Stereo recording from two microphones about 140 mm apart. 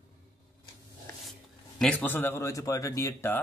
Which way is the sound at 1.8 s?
10° left (ahead or behind).